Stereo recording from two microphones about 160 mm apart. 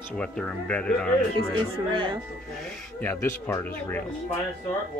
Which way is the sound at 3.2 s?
20° left (ahead or behind).